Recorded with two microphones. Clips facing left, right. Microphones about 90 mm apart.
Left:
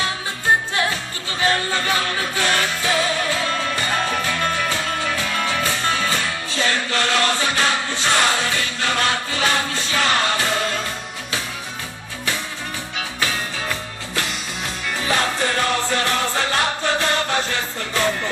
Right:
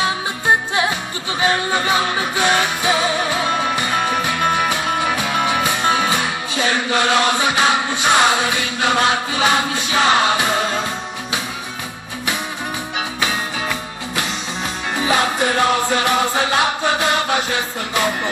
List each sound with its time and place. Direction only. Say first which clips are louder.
1.4 s music: right 2 dB; 15° right (ahead or behind)
13.2 s music: right 2 dB; 15° right (ahead or behind)